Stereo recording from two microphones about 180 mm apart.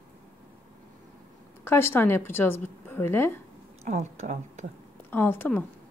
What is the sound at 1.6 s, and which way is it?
A woman's voice, 15° left (ahead or behind).